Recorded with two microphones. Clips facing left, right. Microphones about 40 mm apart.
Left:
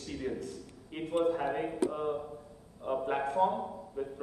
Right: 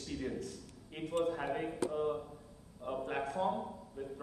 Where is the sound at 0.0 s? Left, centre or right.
Centre.